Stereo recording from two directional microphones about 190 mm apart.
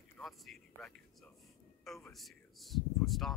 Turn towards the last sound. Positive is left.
turn(degrees=0)  # may be behind; listen again after turning